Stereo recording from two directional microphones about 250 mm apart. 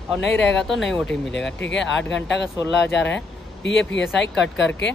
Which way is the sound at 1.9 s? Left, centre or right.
Left.